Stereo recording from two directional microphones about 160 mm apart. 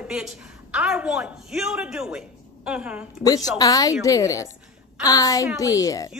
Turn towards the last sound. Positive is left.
turn(degrees=20)  # may be behind; listen again after turning